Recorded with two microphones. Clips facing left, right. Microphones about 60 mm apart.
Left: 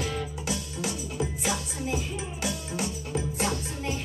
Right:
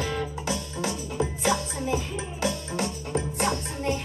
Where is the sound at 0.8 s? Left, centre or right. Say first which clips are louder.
Right 3 dB; right.